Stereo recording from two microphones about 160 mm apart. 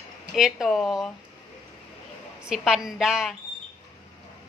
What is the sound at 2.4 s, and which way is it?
Speech, centre (ahead or behind).